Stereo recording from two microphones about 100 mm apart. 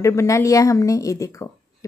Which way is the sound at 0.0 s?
30° left (ahead or behind).